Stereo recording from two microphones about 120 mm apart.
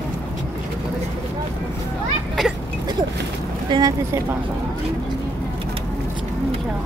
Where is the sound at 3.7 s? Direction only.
35° right (ahead or behind).